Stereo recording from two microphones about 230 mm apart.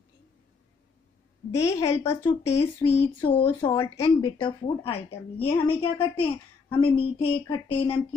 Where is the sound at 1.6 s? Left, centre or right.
Centre.